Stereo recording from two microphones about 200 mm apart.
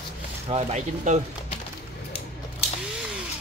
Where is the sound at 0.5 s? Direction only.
35° right (ahead or behind).